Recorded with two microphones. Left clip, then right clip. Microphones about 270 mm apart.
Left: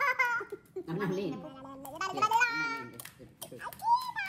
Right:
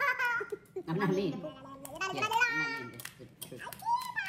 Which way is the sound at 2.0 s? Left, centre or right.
Centre.